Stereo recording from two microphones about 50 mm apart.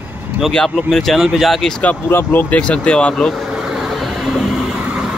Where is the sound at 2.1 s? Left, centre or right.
Left.